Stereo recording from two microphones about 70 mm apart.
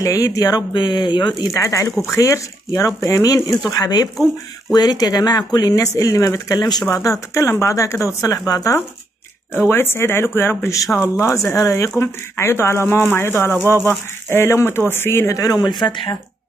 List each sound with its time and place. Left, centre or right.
0.0 s speech: left
1.5 s speech: left
3.7 s speech: left
5.8 s speech: left
6.6 s speech: left
6.9 s speech: left
9.5 s speech: left
10.7 s speech: left
15.3 s speech: left